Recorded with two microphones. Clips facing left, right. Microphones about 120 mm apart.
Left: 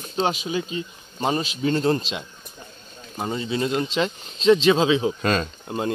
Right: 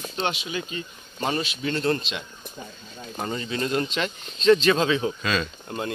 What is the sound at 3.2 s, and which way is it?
Speech, 15° left (ahead or behind).